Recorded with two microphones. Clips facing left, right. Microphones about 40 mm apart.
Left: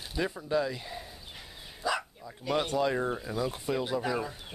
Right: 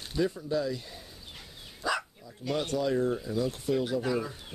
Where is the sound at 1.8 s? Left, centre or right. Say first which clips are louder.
Even; centre.